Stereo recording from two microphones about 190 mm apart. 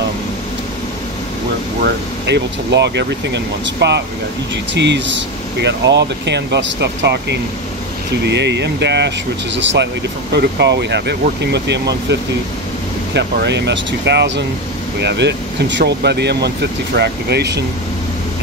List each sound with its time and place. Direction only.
1.8 s speech: 65° right (ahead or behind)